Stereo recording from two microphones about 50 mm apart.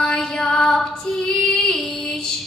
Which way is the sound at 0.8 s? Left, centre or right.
Centre.